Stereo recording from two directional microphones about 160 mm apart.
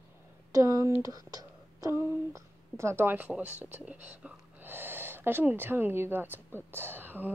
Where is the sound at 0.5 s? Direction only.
20° right (ahead or behind).